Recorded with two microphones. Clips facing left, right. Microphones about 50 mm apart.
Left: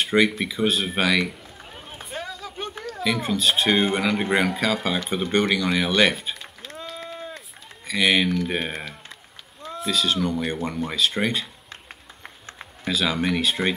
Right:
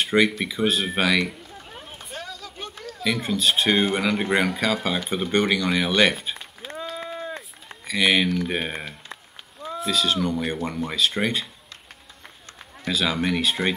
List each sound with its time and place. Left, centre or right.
0.0 s a man's voice: centre
2.1 s vehicle: centre
2.9 s speech: centre
6.8 s a sound: centre
9.6 s speech: centre
12.8 s speech: centre